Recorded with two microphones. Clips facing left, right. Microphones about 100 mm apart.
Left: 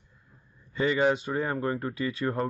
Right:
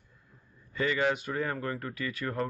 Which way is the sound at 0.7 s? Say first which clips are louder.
Left 4 dB; 20° left (ahead or behind).